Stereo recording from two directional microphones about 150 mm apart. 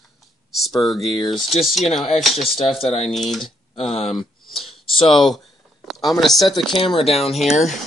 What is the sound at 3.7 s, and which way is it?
Speech, 40° left (ahead or behind).